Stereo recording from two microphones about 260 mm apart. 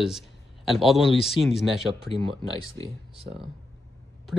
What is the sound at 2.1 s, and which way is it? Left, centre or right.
Speech, centre.